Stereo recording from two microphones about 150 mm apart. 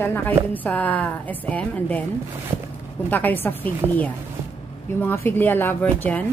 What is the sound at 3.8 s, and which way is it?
Speech, 15° right (ahead or behind).